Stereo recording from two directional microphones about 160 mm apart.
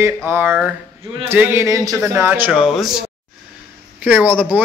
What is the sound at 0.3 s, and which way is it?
A man's voice, 10° right (ahead or behind).